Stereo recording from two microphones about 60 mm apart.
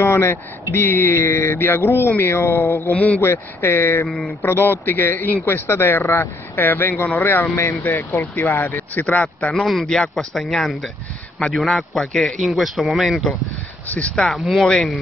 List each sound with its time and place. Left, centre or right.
0.0 s a man's voice: left
4.1 s a man's voice: centre
4.4 s a man's voice: left
6.6 s a man's voice: left
9.0 s speech: left
9.5 s a man's voice: centre
13.8 s speech: left
14.1 s a man's voice: centre